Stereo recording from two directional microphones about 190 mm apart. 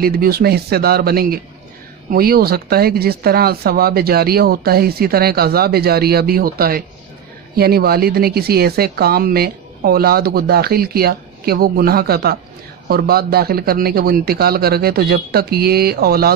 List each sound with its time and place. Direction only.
0.0 s speech: 55° right (ahead or behind)